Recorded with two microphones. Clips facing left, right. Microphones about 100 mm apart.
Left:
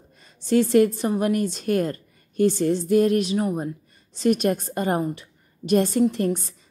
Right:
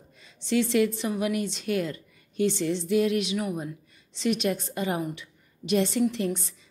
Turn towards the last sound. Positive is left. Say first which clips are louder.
# left 5 dB
turn(degrees=45)  # may be behind; listen again after turning